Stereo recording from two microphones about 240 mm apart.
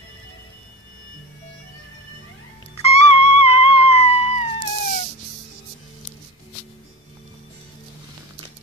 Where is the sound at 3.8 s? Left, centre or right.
Left.